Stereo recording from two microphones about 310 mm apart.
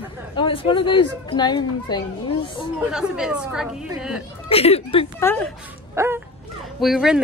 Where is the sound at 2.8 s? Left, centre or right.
Centre.